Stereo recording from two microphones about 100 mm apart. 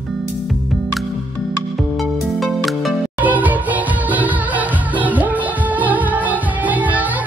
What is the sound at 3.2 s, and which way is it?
Music, 15° right (ahead or behind).